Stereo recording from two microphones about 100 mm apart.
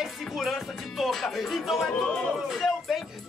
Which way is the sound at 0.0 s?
Centre (ahead or behind).